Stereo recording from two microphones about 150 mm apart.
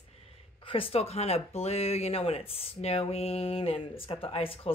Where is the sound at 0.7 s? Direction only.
40° left (ahead or behind).